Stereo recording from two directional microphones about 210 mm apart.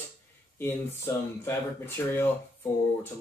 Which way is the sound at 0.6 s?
10° left (ahead or behind).